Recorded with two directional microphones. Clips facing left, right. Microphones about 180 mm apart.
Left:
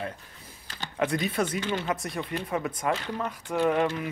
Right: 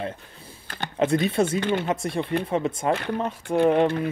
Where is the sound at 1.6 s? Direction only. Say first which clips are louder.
Right 6 dB; 60° right (ahead or behind).